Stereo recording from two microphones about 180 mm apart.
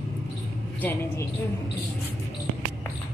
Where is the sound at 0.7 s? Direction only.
10° left (ahead or behind).